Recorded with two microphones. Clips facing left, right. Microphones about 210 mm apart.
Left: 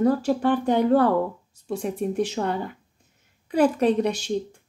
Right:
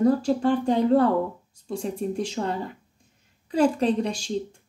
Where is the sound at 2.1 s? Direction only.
30° right (ahead or behind).